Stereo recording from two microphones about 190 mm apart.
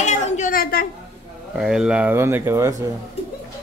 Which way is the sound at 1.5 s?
Centre (ahead or behind).